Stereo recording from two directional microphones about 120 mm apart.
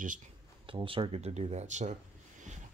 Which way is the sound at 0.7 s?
45° right (ahead or behind).